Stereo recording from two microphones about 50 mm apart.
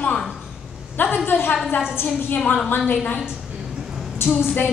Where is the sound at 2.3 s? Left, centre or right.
Left.